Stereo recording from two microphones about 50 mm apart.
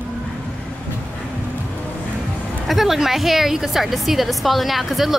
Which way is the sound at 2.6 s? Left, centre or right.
Centre.